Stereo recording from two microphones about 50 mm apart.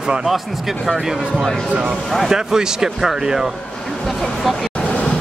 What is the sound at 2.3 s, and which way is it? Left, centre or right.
Speech, centre.